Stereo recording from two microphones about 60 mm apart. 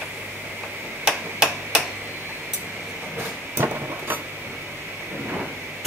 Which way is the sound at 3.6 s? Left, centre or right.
Right.